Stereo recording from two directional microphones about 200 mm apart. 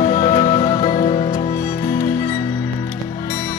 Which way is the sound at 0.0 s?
40° left (ahead or behind).